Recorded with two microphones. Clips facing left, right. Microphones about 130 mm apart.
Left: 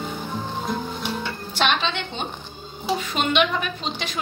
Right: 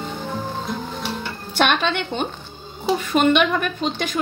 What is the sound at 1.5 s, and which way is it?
Music, 55° right (ahead or behind).